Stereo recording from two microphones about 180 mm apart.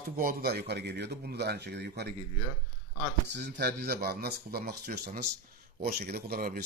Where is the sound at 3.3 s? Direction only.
70° right (ahead or behind).